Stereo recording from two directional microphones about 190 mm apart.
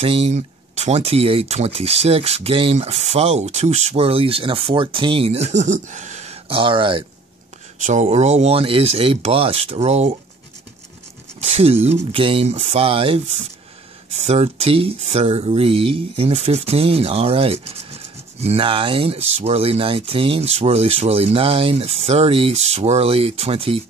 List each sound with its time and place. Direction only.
0.0 s speech: 30° right (ahead or behind)
7.8 s speech: 40° right (ahead or behind)
11.6 s speech: 30° right (ahead or behind)
14.2 s speech: 35° right (ahead or behind)